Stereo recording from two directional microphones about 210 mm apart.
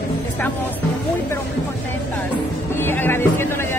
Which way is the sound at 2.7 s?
10° left (ahead or behind).